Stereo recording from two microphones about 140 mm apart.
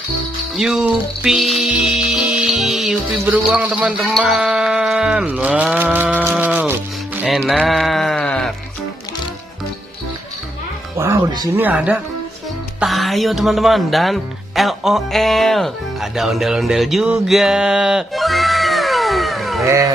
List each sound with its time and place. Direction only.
0.6 s music: 5° right (ahead or behind)
3.4 s a man's voice: 10° right (ahead or behind)
4.2 s a sound: 10° right (ahead or behind)
7.4 s sheep: centre (ahead or behind)
11.0 s speech: 25° right (ahead or behind)
11.5 s a man's voice: 10° right (ahead or behind)
12.8 s speech: centre (ahead or behind)
19.6 s speech: 20° right (ahead or behind)